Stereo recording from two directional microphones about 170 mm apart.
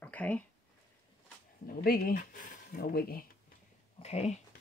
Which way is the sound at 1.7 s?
60° left (ahead or behind).